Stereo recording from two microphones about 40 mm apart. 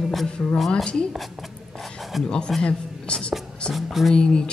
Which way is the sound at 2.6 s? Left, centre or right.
Left.